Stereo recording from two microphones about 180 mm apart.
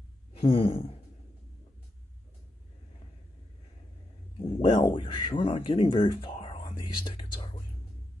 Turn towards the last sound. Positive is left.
turn(degrees=25)  # may be behind; listen again after turning